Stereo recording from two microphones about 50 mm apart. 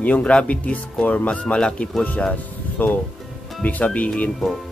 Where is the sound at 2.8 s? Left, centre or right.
Left.